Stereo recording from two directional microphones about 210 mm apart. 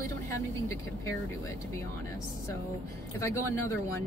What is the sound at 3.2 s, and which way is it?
Speech, 15° left (ahead or behind).